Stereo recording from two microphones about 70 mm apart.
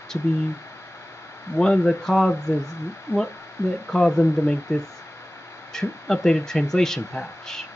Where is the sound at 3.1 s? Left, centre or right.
Left.